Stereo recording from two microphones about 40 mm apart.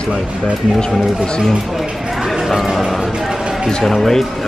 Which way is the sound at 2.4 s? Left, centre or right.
Centre.